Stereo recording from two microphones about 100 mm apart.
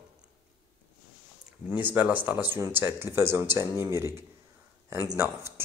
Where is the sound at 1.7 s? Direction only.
20° right (ahead or behind).